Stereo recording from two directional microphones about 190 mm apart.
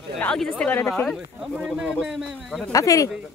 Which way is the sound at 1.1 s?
5° right (ahead or behind).